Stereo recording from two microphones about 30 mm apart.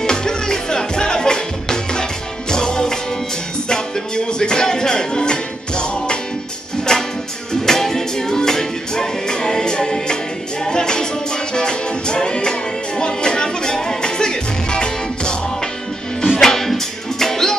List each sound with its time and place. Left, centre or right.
0.0 s music: left
6.8 s music: centre
16.3 s music: centre